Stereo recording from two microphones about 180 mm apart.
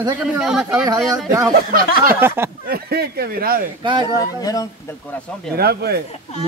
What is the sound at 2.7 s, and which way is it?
Speech, 60° right (ahead or behind).